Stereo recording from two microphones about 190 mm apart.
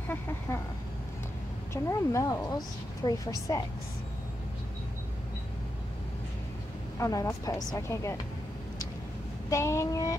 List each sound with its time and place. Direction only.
0.5 s a woman's voice: 15° left (ahead or behind)
1.7 s a woman's voice: 15° left (ahead or behind)
7.0 s a woman's voice: 15° left (ahead or behind)
9.5 s a woman's voice: 15° left (ahead or behind)